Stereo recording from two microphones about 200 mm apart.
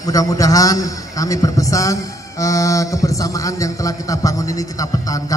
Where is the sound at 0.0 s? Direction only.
15° left (ahead or behind).